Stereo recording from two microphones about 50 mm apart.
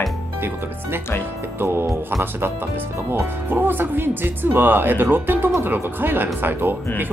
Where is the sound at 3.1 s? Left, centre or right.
Right.